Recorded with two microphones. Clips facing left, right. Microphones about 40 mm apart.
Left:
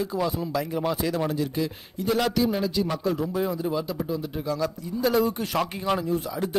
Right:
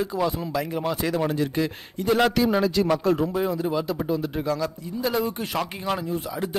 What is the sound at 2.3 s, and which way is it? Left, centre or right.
Speech, right.